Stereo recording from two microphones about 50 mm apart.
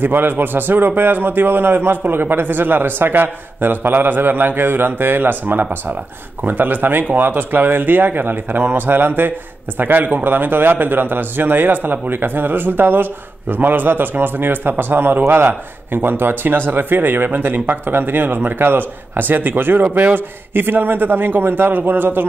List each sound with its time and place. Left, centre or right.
0.0 s a man's voice: right